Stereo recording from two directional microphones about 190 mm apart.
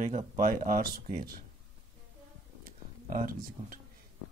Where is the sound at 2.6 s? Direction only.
50° right (ahead or behind).